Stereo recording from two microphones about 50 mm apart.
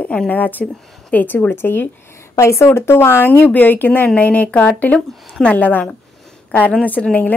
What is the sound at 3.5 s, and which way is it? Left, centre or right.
A woman's voice, left.